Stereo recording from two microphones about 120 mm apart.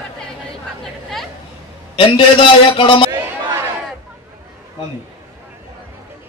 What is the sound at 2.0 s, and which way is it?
A man's voice, 45° left (ahead or behind).